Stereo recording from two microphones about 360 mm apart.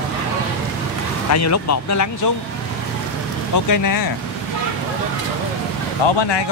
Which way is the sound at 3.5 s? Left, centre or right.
Left.